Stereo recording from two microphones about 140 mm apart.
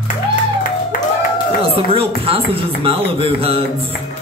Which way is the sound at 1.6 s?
40° right (ahead or behind).